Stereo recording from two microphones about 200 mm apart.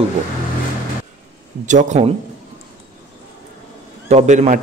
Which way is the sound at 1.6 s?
40° right (ahead or behind).